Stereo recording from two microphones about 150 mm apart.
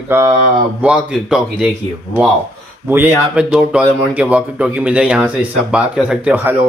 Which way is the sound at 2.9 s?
15° right (ahead or behind).